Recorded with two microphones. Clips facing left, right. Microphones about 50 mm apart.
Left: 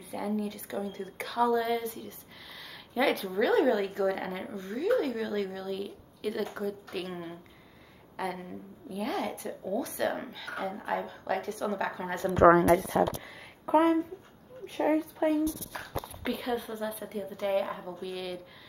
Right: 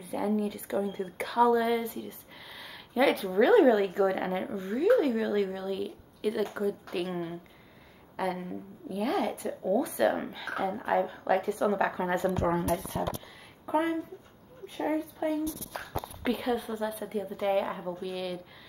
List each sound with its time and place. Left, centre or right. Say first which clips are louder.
0.0 s a woman's voice: right 3 dB; centre
3.3 s a woman's voice: right 7 dB; centre
9.5 s speech: right 5 dB; right
9.8 s a woman's voice: right 4 dB; centre
12.4 s a woman's voice: left 9 dB; left
15.2 s speech: left 3 dB; left
16.3 s a woman's voice: right 3 dB; centre